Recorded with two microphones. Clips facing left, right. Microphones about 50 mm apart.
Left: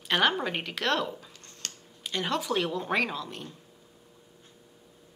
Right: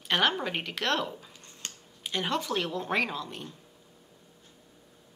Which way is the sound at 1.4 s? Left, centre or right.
Centre.